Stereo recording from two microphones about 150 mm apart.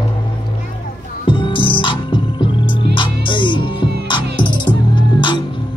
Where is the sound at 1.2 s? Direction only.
35° left (ahead or behind).